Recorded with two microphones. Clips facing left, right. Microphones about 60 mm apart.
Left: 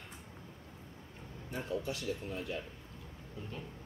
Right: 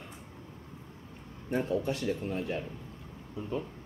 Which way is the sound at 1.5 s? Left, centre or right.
Right.